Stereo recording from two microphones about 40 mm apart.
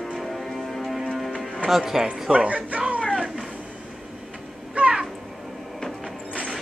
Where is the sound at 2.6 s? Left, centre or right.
Right.